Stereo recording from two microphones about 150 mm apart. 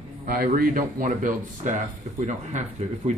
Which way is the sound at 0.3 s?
70° right (ahead or behind).